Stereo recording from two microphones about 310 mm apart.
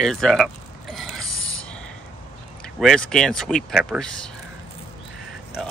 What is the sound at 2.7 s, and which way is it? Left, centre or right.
Speech, centre.